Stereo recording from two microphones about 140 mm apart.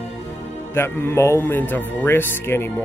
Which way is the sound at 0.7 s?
15° left (ahead or behind).